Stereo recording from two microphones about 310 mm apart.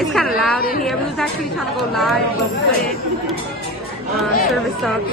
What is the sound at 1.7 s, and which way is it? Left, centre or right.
Speech, centre.